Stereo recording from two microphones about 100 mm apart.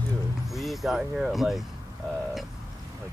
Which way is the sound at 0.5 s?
Centre (ahead or behind).